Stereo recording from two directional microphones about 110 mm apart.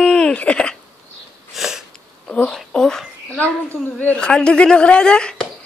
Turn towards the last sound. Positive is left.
turn(degrees=10)  # may be behind; listen again after turning